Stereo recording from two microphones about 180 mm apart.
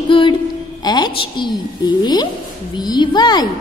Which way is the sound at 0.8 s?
25° left (ahead or behind).